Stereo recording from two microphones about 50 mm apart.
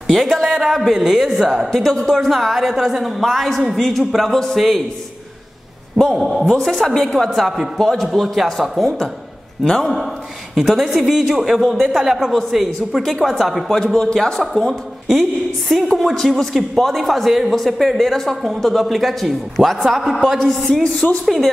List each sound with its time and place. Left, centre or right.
0.0 s speech: centre
5.9 s speech: centre
7.8 s a woman's voice: centre
13.9 s a woman's voice: centre
20.6 s a woman's voice: centre